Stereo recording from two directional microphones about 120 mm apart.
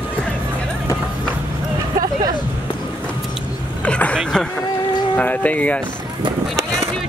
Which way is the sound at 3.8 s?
10° left (ahead or behind).